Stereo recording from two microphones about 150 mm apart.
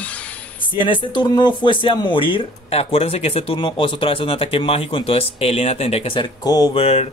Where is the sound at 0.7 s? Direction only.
35° left (ahead or behind).